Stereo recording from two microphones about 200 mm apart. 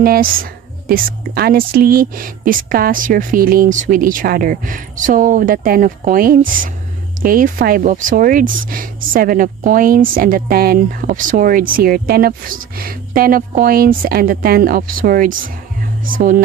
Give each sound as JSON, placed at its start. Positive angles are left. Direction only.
{"t": 0.0, "sound": "speech", "side_deg": -45}